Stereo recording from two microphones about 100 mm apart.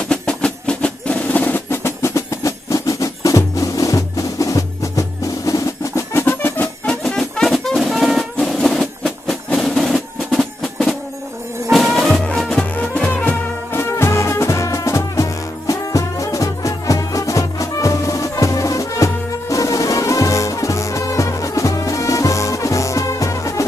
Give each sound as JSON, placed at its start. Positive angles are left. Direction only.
{"t": 0.1, "sound": "percussion", "side_deg": 10}
{"t": 7.0, "sound": "music", "side_deg": 5}
{"t": 8.4, "sound": "a sound", "side_deg": 5}
{"t": 11.7, "sound": "music", "side_deg": 0}